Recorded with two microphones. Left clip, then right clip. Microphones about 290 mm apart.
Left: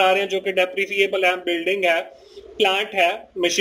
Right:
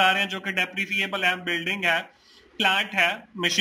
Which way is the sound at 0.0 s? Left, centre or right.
Right.